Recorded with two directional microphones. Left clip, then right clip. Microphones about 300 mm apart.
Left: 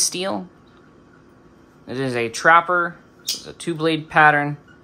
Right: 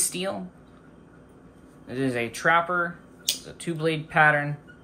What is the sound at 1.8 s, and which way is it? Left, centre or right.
Speech, centre.